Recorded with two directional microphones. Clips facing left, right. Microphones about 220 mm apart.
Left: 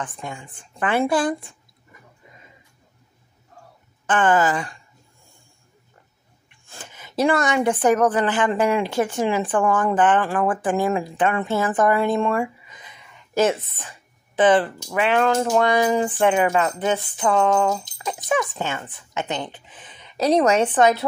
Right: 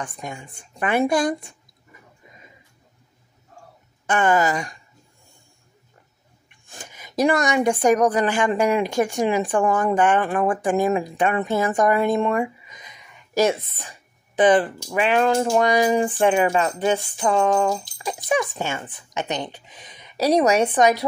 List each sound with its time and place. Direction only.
0.2 s a woman's voice: 15° right (ahead or behind)
4.1 s a woman's voice: 10° right (ahead or behind)
6.6 s a woman's voice: 15° right (ahead or behind)
13.7 s a sound: 25° right (ahead or behind)
14.4 s a woman's voice: 15° right (ahead or behind)